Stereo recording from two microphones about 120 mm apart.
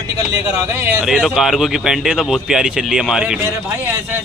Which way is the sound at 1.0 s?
5° right (ahead or behind).